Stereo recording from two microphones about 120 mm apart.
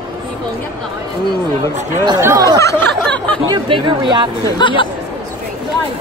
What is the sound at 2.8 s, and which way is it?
Speech, 10° left (ahead or behind).